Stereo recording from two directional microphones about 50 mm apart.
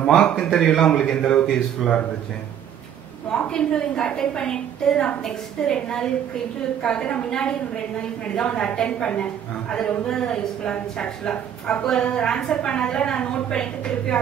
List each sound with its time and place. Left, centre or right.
0.0 s a woman's voice: centre
0.5 s a woman's voice: centre
3.3 s a woman's voice: centre